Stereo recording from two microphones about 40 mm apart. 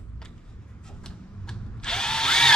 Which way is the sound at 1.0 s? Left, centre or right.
Centre.